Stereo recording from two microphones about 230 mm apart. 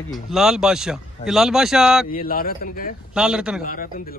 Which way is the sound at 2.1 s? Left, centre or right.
Left.